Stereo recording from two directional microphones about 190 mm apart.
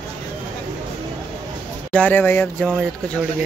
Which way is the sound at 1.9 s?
10° left (ahead or behind).